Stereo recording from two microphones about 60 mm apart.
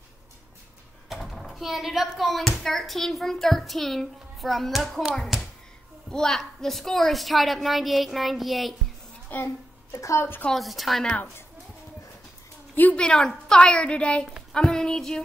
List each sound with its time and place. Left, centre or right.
1.0 s speech: centre
5.3 s a sound: centre
6.0 s speech: centre
9.3 s a woman's voice: left
9.9 s a woman's voice: left
10.5 s speech: centre
12.9 s a woman's voice: centre